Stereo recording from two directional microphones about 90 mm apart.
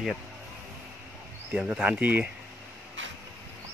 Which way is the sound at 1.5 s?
10° right (ahead or behind).